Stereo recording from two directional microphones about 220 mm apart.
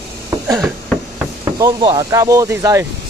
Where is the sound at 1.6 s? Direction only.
20° right (ahead or behind).